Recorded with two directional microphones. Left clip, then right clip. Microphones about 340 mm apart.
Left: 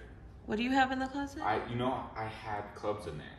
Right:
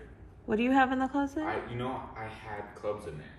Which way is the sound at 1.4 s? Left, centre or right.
Left.